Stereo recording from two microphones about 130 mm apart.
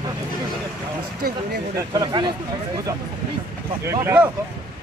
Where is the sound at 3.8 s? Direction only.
15° right (ahead or behind).